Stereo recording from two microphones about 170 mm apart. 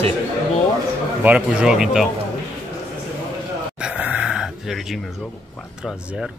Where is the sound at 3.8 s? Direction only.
5° right (ahead or behind).